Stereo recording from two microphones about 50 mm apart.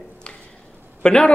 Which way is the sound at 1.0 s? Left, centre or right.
Centre.